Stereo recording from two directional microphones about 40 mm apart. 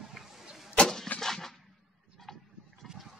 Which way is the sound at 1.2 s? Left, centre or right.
Centre.